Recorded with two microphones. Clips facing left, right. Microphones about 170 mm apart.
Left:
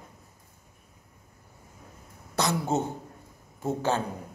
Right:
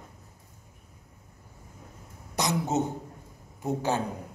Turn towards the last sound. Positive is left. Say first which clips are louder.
# left 1 dB
turn(degrees=-15)  # may be behind; listen again after turning